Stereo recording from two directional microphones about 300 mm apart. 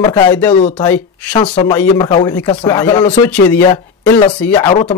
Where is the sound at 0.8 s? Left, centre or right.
Centre.